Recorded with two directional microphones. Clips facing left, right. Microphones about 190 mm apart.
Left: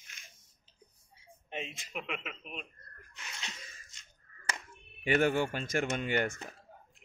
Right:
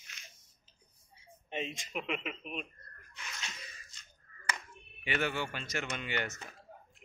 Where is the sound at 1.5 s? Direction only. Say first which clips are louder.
Right 2 dB; 5° left (ahead or behind).